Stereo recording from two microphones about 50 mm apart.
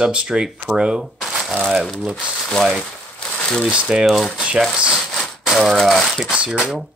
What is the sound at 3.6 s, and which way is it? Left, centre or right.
Speech, centre.